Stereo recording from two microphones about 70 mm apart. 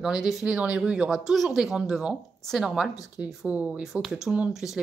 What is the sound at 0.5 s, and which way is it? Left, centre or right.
Speech, centre.